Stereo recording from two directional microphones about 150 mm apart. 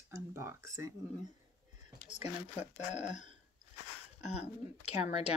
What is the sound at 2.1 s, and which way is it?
Speech, 45° left (ahead or behind).